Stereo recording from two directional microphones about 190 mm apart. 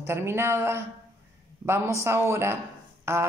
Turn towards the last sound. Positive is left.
turn(degrees=-15)  # may be behind; listen again after turning